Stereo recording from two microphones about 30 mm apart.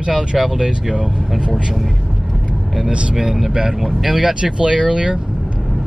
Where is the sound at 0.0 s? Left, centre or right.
Right.